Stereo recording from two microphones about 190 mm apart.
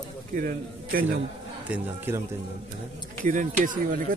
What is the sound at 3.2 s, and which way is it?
Speech, 45° right (ahead or behind).